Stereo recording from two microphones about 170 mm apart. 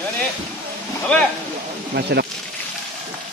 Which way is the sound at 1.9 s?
75° right (ahead or behind).